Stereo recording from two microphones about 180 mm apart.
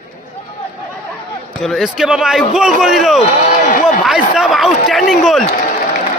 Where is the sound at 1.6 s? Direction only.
Centre (ahead or behind).